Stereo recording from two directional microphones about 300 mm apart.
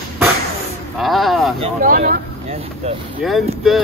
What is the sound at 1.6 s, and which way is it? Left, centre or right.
Speech, right.